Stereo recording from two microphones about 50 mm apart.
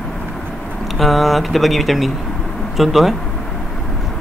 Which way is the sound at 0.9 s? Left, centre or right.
Centre.